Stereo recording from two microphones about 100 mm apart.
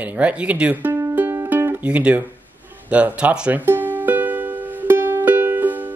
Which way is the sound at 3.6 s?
20° right (ahead or behind).